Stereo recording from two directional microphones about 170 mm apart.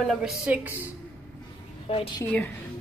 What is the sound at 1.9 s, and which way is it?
Speech, 35° left (ahead or behind).